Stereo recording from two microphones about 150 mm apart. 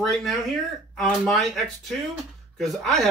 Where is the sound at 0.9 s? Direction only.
5° left (ahead or behind).